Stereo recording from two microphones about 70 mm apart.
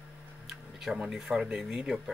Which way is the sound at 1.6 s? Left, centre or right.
Centre.